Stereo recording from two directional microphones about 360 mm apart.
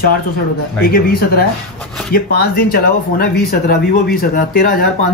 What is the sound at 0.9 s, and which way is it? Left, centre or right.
Speech, left.